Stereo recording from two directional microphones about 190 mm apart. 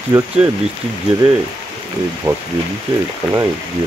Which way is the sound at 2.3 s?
20° right (ahead or behind).